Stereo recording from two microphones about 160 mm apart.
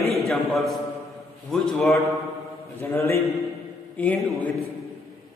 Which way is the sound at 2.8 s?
15° left (ahead or behind).